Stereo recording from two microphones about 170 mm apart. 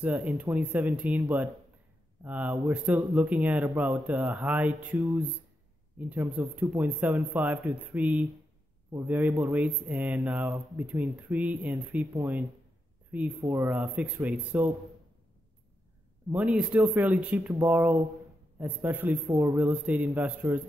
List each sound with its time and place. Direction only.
0.0 s speech: 5° right (ahead or behind)
2.2 s speech: 10° right (ahead or behind)
13.1 s speech: 5° right (ahead or behind)
16.3 s speech: 5° right (ahead or behind)